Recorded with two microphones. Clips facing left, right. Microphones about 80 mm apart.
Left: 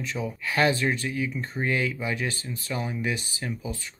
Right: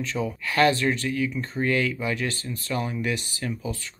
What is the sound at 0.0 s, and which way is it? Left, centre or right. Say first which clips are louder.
Speech: right 3 dB; centre.